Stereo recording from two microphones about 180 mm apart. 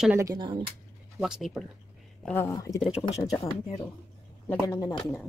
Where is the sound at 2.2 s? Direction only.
15° left (ahead or behind).